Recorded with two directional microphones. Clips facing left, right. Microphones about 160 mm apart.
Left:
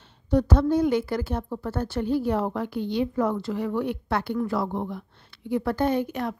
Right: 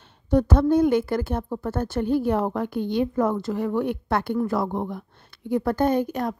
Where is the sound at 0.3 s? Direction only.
50° right (ahead or behind).